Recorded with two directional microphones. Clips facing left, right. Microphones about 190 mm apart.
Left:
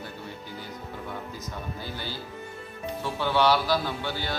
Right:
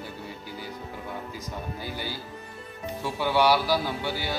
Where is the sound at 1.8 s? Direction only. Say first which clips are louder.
Right 1 dB; 10° right (ahead or behind).